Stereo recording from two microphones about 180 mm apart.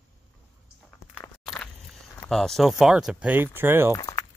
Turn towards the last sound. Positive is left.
turn(degrees=20)  # may be behind; listen again after turning